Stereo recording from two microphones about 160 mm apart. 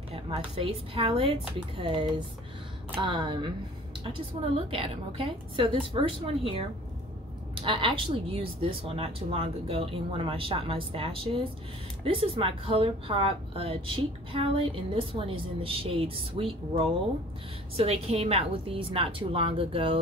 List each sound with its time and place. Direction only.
0.1 s speech: 35° right (ahead or behind)
4.6 s speech: 35° right (ahead or behind)
7.6 s speech: 30° right (ahead or behind)
17.7 s speech: 40° right (ahead or behind)